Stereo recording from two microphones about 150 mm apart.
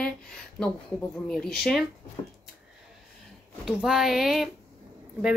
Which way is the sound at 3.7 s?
5° right (ahead or behind).